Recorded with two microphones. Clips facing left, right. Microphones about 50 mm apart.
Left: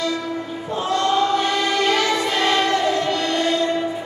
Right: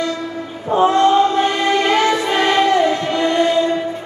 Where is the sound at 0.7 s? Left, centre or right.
Right.